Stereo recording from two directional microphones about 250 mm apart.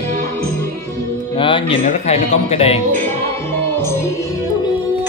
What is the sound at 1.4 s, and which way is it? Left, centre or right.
A man's voice, left.